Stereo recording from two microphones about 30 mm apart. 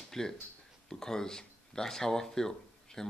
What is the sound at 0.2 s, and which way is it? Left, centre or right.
Speech, centre.